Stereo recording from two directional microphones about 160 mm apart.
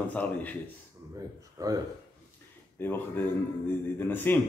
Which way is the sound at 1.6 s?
20° right (ahead or behind).